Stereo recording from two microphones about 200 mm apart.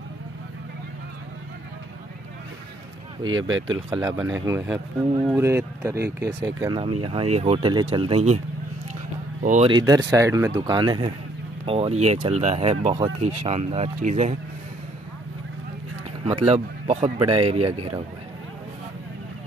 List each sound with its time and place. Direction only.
3.3 s speech: 20° right (ahead or behind)
9.4 s speech: 40° right (ahead or behind)
9.7 s speech: 20° right (ahead or behind)
16.3 s speech: 30° right (ahead or behind)